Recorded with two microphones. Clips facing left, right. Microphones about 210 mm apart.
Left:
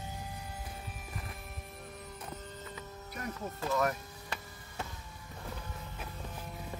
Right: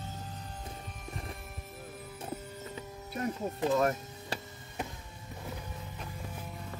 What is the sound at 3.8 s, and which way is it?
Music, 30° right (ahead or behind).